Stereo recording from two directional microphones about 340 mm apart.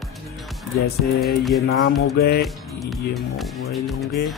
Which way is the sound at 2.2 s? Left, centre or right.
Left.